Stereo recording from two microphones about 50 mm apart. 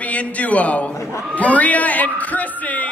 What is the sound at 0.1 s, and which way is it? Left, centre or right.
A man's voice, left.